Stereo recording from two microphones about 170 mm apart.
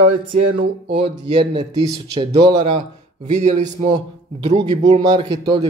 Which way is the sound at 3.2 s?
45° right (ahead or behind).